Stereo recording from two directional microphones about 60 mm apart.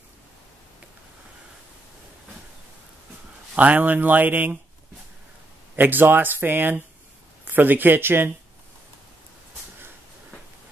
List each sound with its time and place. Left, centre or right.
3.5 s speech: right
5.8 s speech: right